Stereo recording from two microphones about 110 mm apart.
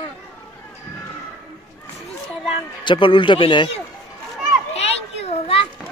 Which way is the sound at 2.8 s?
45° left (ahead or behind).